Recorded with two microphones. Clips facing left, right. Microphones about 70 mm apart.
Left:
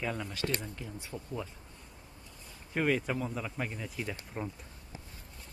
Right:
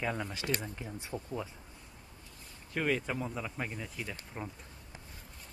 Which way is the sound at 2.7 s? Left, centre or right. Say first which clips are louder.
Left 2 dB; centre.